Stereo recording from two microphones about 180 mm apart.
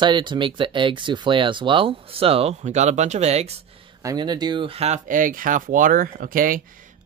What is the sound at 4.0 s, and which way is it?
Speech, 20° right (ahead or behind).